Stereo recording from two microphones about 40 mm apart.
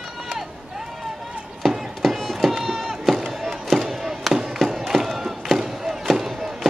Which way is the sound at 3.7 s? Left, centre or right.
Centre.